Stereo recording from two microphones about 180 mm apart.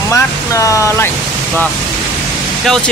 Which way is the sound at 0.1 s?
15° left (ahead or behind).